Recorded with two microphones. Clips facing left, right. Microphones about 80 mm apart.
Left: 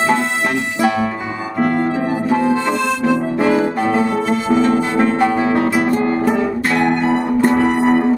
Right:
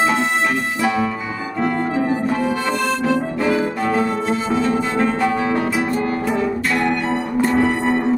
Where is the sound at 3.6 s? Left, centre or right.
Centre.